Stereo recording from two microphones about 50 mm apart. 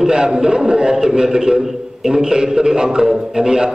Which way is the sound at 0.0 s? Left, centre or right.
Centre.